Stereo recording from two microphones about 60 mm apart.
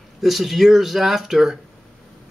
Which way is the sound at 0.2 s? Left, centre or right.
Centre.